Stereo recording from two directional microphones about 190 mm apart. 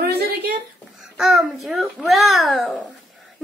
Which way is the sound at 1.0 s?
Centre (ahead or behind).